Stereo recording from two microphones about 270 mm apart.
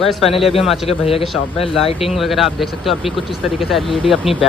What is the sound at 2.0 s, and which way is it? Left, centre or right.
Speech, centre.